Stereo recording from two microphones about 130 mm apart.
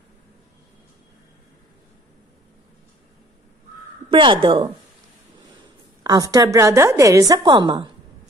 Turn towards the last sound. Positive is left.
turn(degrees=-35)  # may be behind; listen again after turning